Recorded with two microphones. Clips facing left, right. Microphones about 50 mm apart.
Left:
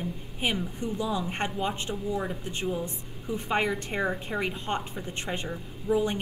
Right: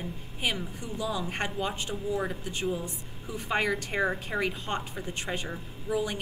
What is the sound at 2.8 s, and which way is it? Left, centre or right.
Speech, left.